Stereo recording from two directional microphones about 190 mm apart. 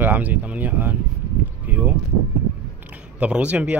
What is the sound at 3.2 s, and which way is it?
Speech, 5° right (ahead or behind).